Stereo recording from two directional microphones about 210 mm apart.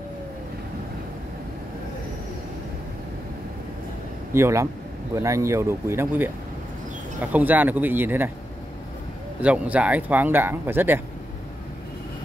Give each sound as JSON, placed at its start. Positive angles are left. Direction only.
{"t": 4.3, "sound": "speech", "side_deg": -15}
{"t": 9.4, "sound": "speech", "side_deg": -5}